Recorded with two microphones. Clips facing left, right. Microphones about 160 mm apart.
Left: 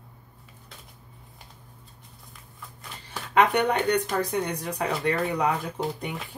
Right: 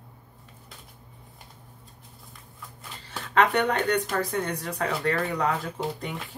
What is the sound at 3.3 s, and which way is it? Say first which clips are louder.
Speech: left 1 dB; 15° left (ahead or behind).